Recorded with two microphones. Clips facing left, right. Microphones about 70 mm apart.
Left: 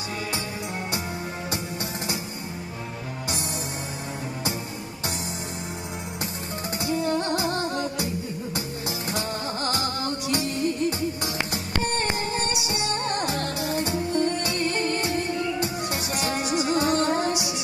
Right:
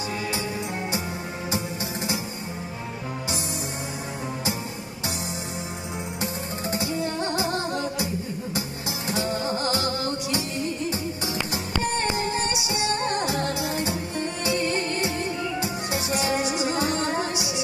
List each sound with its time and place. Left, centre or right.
12.1 s music: left
16.1 s music: left